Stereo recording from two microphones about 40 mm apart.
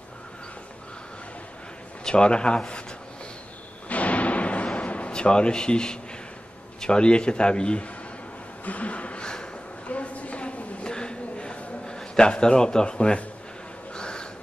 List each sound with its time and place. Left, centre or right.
2.0 s a man's voice: left
3.9 s music: left
4.7 s a sound: left
5.1 s a man's voice: left
8.6 s speech: left
9.2 s a sound: left